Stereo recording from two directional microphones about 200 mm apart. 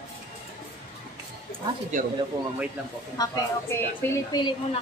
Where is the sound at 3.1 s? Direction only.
15° left (ahead or behind).